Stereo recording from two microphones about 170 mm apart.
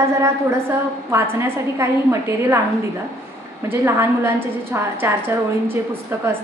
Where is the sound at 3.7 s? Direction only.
15° right (ahead or behind).